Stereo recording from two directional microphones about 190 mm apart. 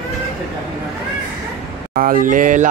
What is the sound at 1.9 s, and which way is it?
Speech, 50° right (ahead or behind).